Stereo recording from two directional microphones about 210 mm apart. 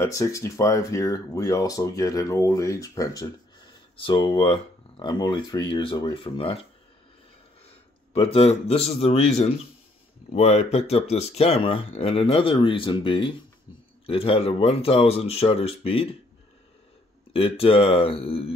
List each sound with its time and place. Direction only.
0.0 s speech: 15° left (ahead or behind)
8.1 s speech: 30° left (ahead or behind)
17.3 s speech: 25° left (ahead or behind)